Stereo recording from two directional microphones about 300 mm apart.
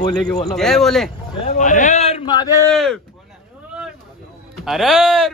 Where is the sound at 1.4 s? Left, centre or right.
Left; by 2.9 s centre.